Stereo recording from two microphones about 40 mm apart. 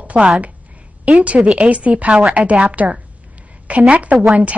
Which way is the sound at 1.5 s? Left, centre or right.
Right.